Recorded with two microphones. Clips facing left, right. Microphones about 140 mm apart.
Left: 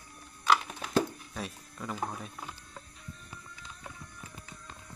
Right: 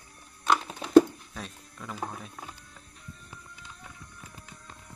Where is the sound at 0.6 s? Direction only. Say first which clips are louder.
Right 3 dB; 25° right (ahead or behind).